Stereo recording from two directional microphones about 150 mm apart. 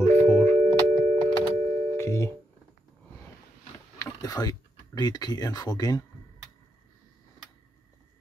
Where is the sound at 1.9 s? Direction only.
20° left (ahead or behind).